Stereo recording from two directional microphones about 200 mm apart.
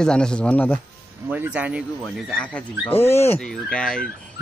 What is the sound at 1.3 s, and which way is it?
Speech, 10° right (ahead or behind).